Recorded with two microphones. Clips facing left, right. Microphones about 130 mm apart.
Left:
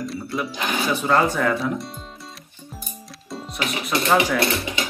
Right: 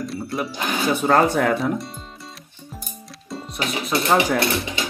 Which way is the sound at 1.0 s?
50° right (ahead or behind).